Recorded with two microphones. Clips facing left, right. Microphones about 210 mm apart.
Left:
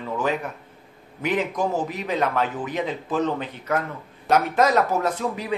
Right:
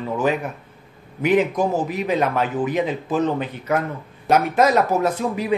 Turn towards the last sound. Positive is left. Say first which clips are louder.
# right 4 dB
turn(degrees=-10)  # may be behind; listen again after turning